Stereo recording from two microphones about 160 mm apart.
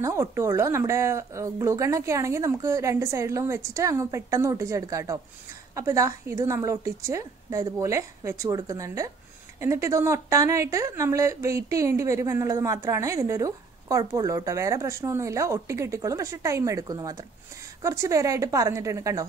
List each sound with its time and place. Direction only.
0.0 s a woman's voice: 15° right (ahead or behind)